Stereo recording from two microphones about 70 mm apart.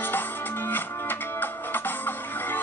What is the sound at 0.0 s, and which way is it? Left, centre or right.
Music, left.